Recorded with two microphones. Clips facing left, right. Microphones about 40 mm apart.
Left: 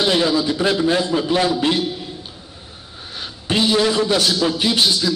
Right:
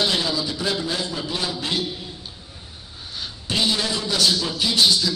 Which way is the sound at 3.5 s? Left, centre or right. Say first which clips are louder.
Left 5 dB; left.